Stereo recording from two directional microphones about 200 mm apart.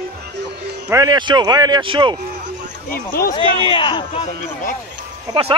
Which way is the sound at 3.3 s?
25° left (ahead or behind).